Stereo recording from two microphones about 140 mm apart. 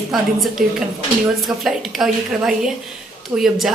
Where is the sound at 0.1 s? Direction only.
5° right (ahead or behind).